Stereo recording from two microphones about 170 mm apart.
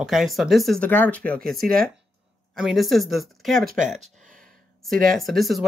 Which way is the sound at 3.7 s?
45° right (ahead or behind).